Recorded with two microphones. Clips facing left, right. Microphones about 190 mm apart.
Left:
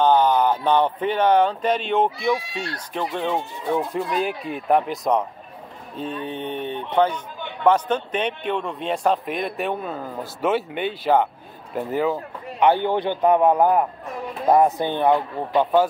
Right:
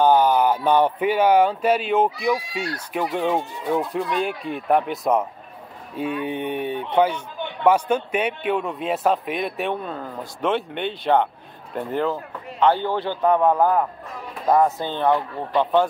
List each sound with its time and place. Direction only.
0.0 s speech: 10° right (ahead or behind)
4.2 s a man's voice: centre (ahead or behind)